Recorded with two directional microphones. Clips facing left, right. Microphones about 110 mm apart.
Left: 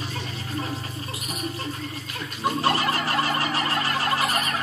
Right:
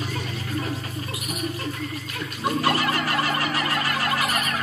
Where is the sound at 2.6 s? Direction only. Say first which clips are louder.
Right 1 dB; 30° left (ahead or behind).